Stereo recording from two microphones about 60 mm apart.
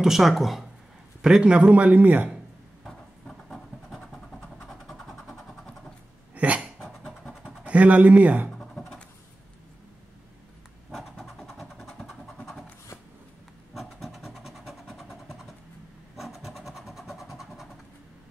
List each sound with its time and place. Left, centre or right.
0.0 s a man's voice: centre
1.5 s a man's voice: right
2.8 s a sound: centre
4.8 s vehicle: centre
6.3 s dog: right
7.2 s vehicle: centre
8.5 s scratch: centre
10.9 s vehicle: centre
13.7 s vehicle: centre